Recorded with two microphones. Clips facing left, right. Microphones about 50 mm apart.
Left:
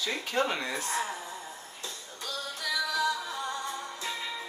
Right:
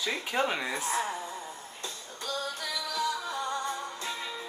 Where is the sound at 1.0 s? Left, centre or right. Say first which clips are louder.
Right 1 dB; right.